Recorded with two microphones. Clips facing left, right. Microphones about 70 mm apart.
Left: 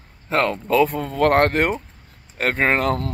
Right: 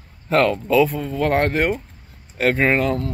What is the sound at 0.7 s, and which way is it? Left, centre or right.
Speech, left.